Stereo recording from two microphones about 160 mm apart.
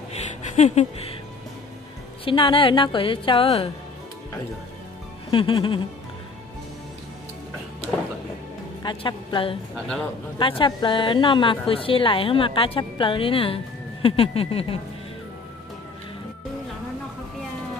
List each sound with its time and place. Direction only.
0.1 s a sound: 45° left (ahead or behind)
2.2 s a woman's voice: 30° left (ahead or behind)
5.3 s a woman's voice: 35° left (ahead or behind)
8.8 s a woman's voice: 30° left (ahead or behind)